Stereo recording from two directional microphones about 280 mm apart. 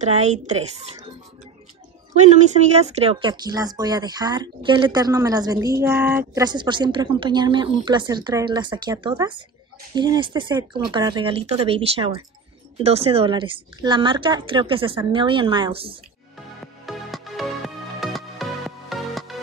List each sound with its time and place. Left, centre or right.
0.0 s a woman's voice: right
2.1 s speech: right
16.8 s music: centre